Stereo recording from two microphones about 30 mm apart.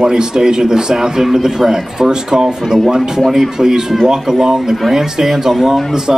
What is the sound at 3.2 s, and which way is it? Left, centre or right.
Speech, centre.